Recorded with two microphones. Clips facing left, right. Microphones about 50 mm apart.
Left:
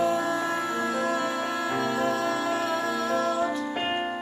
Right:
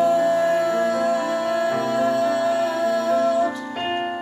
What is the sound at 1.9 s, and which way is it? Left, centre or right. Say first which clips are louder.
Music: right 6 dB; right.